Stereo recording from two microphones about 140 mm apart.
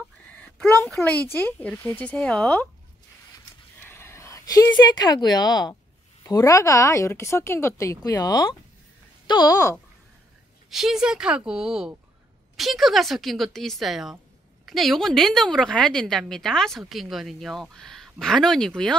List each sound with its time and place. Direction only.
0.7 s speech: 5° left (ahead or behind)
3.8 s a sound: 15° left (ahead or behind)
4.7 s a woman's voice: 30° left (ahead or behind)
10.7 s a woman's voice: 5° right (ahead or behind)